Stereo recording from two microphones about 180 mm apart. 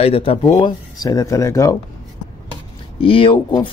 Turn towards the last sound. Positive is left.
turn(degrees=30)  # may be behind; listen again after turning